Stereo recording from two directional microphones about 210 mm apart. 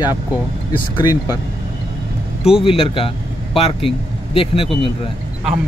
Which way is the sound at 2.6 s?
25° left (ahead or behind).